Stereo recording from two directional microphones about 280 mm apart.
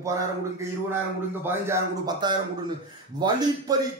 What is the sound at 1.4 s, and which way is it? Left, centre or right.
A man's voice, centre.